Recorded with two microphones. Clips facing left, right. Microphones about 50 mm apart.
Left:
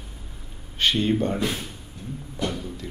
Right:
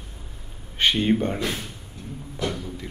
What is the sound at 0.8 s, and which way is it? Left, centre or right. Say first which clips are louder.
Speech: right 1 dB; centre.